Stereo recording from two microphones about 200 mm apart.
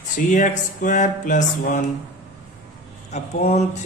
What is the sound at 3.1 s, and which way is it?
Mantra, 35° left (ahead or behind).